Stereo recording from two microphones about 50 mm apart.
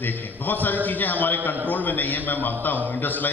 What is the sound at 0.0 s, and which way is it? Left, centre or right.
A man's voice, left.